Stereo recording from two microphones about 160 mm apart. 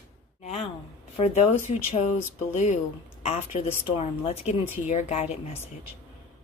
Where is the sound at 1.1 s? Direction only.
45° left (ahead or behind).